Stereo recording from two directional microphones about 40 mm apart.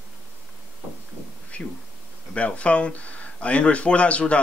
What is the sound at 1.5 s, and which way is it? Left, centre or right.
Speech, left.